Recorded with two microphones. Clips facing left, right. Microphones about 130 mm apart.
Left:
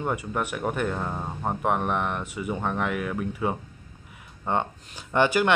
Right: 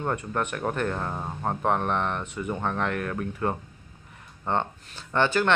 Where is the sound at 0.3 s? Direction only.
5° left (ahead or behind).